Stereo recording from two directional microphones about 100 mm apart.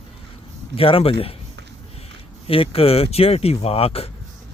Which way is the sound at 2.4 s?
70° left (ahead or behind).